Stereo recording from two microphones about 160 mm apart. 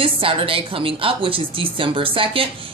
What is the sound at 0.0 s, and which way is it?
A woman's voice, 35° right (ahead or behind).